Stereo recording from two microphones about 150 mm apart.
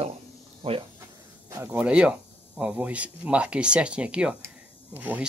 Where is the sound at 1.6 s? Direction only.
10° right (ahead or behind).